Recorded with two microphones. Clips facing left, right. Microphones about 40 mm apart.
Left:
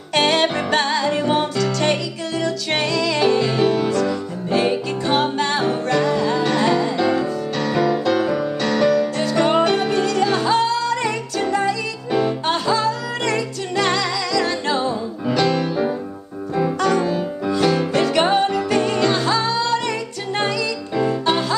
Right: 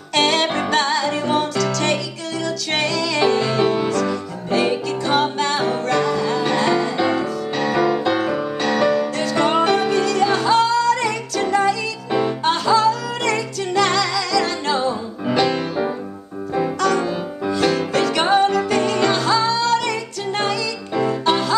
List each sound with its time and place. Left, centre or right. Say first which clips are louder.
0.1 s music: even; centre
3.6 s music: left 1 dB; centre
3.9 s music: left 1 dB; centre
7.0 s music: left 1 dB; centre
9.2 s music: right 1 dB; centre
12.1 s music: left 1 dB; centre
12.4 s music: right 3 dB; centre
15.2 s music: even; centre
17.5 s music: even; centre
20.9 s music: right 1 dB; centre